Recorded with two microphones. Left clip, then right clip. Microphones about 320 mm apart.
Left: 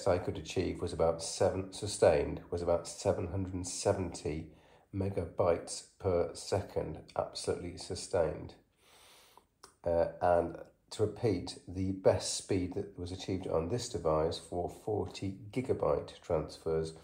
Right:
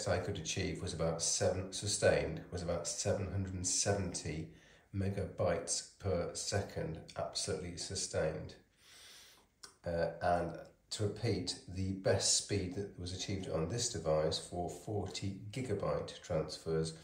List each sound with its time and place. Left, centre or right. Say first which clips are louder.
0.0 s speech: left 5 dB; centre
9.8 s speech: left 5 dB; centre